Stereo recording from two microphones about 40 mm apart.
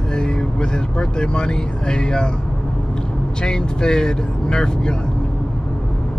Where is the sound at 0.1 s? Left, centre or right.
Left.